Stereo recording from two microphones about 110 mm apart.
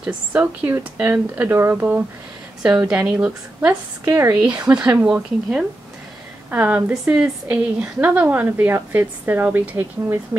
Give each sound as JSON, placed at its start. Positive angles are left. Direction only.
{"t": 0.0, "sound": "a woman's voice", "side_deg": -15}
{"t": 4.0, "sound": "speech", "side_deg": -25}
{"t": 4.4, "sound": "a woman's voice", "side_deg": -15}